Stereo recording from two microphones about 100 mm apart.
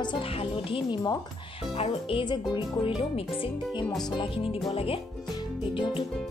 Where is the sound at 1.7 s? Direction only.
90° left.